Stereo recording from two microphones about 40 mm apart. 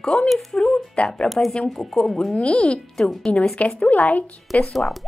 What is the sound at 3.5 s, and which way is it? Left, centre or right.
Speech, left.